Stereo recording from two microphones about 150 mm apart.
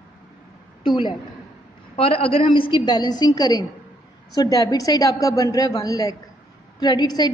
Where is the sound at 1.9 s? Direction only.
40° left (ahead or behind).